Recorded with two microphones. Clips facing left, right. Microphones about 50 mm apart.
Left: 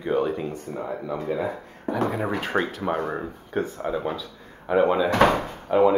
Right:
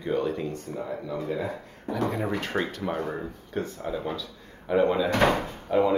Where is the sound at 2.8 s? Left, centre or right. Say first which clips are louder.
Left 4 dB; left.